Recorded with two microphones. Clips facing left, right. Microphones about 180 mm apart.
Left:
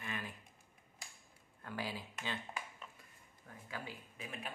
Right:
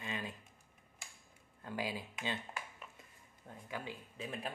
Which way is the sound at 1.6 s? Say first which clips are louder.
Right 3 dB; 15° right (ahead or behind).